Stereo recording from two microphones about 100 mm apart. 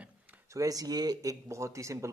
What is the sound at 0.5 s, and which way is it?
Speech, 35° right (ahead or behind).